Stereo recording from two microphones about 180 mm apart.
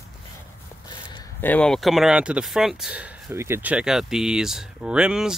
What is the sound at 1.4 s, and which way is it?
Speech, 5° left (ahead or behind).